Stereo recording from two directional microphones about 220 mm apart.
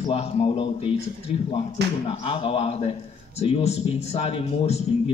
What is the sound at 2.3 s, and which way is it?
A man's voice, 25° left (ahead or behind).